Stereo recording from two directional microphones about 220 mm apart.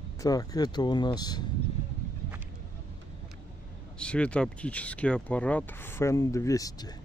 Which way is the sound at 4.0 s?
5° left (ahead or behind).